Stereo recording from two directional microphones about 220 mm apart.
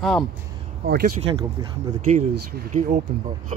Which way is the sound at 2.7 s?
35° right (ahead or behind).